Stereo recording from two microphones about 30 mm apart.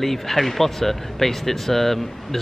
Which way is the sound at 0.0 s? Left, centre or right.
Centre.